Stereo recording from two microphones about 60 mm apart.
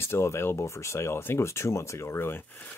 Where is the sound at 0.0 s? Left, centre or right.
Left.